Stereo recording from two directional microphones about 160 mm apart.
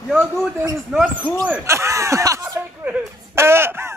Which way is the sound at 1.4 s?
15° right (ahead or behind).